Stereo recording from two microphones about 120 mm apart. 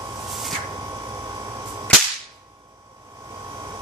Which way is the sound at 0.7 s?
35° right (ahead or behind).